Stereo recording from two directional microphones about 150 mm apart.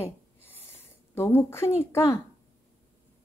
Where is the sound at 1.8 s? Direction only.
20° left (ahead or behind).